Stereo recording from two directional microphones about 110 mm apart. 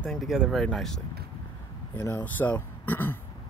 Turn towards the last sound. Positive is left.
turn(degrees=20)  # may be behind; listen again after turning